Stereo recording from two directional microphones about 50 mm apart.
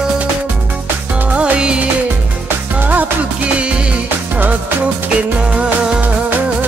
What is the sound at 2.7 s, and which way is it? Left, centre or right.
Music, right.